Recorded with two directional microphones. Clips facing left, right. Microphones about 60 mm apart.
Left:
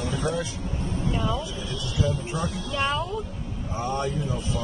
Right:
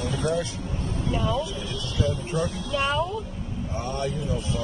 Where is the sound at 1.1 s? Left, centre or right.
Centre.